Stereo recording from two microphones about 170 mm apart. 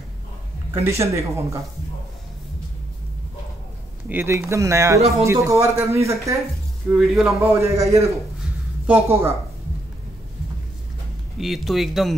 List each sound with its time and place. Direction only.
0.8 s speech: 15° right (ahead or behind)
4.1 s speech: 15° right (ahead or behind)
6.9 s speech: 5° right (ahead or behind)
7.3 s speech: 15° right (ahead or behind)
11.3 s speech: centre (ahead or behind)